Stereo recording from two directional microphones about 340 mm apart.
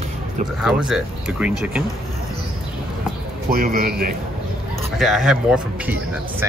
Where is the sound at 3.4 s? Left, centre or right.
Right.